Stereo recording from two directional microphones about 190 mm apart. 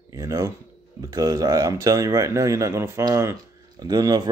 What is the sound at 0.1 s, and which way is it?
Speech, 15° right (ahead or behind).